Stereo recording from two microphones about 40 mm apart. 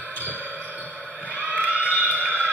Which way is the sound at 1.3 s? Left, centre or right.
Right.